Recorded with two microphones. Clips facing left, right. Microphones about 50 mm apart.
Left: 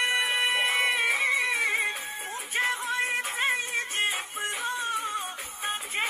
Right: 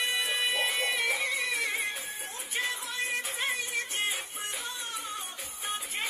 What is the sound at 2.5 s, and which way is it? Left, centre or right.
Music, left.